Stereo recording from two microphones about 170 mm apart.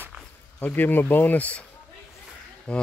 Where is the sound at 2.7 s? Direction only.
5° left (ahead or behind).